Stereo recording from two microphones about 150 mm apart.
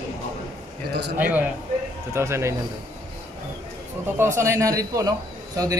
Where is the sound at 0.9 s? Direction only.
90° right.